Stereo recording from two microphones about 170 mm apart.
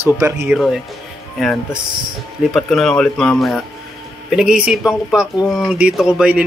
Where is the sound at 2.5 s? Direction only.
Centre (ahead or behind).